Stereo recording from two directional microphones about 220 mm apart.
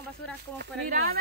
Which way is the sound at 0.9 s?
40° right (ahead or behind).